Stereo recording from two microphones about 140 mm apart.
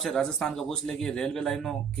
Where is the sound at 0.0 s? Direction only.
Centre (ahead or behind).